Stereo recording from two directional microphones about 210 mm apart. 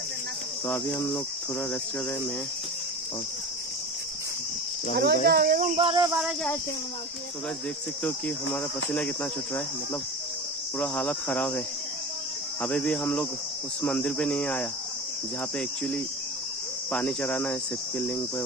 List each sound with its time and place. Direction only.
0.7 s cricket: 10° left (ahead or behind)
4.9 s speech: 50° right (ahead or behind)
5.8 s speech: 25° right (ahead or behind)
6.1 s speech: centre (ahead or behind)
8.5 s speech: 5° left (ahead or behind)
10.8 s cricket: 5° left (ahead or behind)
12.6 s cricket: 5° left (ahead or behind)
13.8 s speech: 5° left (ahead or behind)
16.9 s cricket: 5° left (ahead or behind)